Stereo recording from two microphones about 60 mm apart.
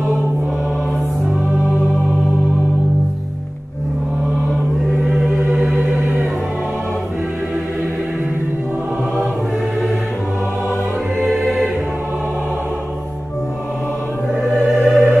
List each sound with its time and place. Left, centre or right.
5.5 s music: centre
11.2 s music: centre
14.8 s music: centre